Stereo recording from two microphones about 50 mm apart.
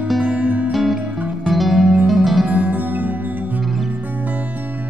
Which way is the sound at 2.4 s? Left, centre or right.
Right.